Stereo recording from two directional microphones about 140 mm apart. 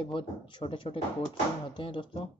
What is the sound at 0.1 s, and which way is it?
Speech, 40° left (ahead or behind).